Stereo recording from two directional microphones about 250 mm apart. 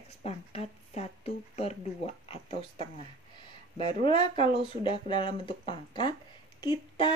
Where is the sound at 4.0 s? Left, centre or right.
Centre.